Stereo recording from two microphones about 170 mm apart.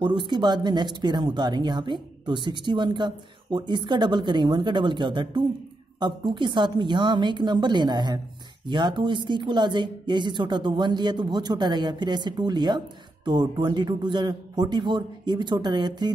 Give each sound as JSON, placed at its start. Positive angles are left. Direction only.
{"t": 0.0, "sound": "speech", "side_deg": -25}